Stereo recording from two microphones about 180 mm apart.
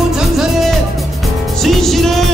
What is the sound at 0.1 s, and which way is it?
Music, centre (ahead or behind).